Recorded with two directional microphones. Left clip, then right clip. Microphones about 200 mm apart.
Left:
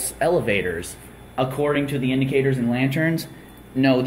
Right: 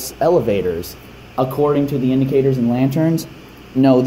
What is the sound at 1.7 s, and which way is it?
Speech, 20° right (ahead or behind).